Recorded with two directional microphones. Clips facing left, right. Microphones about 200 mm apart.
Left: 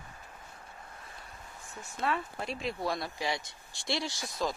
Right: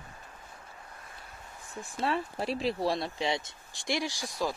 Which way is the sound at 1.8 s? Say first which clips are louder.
Right 2 dB; 30° right (ahead or behind).